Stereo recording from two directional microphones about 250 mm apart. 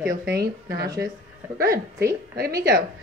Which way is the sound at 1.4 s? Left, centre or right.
Centre.